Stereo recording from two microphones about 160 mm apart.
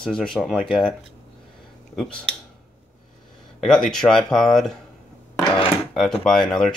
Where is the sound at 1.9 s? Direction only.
5° left (ahead or behind).